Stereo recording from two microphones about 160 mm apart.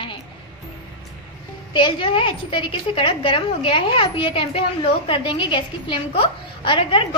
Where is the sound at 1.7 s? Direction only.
30° left (ahead or behind).